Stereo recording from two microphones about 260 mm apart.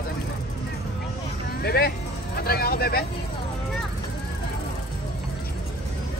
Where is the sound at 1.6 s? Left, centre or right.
Left.